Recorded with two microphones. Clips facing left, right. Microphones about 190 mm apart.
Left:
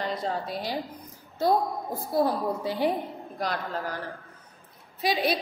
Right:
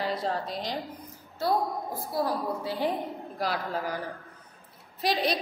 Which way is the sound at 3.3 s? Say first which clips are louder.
Even; 5° right (ahead or behind).